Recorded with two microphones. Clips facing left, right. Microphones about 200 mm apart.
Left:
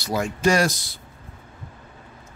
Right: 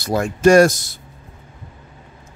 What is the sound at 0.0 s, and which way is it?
Speech, 50° right (ahead or behind).